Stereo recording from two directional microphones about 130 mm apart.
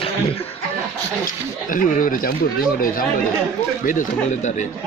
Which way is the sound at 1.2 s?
90° left.